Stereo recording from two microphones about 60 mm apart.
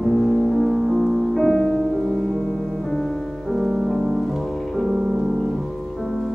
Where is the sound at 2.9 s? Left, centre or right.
Centre.